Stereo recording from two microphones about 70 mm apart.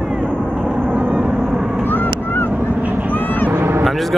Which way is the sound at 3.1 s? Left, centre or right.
Left.